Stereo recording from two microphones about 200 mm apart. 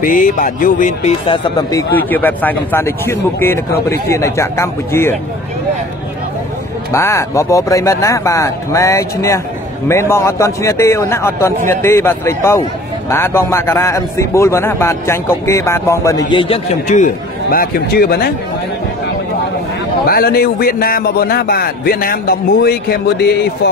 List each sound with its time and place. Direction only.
0.0 s a man's voice: 40° left (ahead or behind); by 5.1 s 15° left (ahead or behind)
6.9 s a man's voice: 15° left (ahead or behind); by 18.3 s 50° left (ahead or behind)
20.1 s speech: 50° left (ahead or behind)